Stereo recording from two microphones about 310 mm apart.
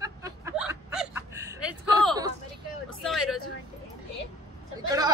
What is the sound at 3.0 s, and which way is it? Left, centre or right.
Speech, centre.